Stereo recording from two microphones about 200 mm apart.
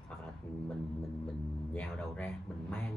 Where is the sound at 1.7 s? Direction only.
5° left (ahead or behind).